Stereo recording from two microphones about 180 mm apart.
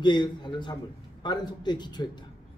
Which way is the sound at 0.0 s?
25° left (ahead or behind).